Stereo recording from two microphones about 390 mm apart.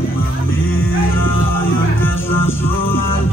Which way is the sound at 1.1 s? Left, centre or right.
Left.